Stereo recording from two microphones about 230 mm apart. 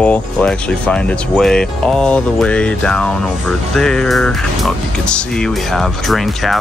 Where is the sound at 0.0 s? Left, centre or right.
Centre.